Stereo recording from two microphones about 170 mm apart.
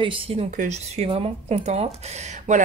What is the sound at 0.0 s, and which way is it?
Speech, 30° right (ahead or behind).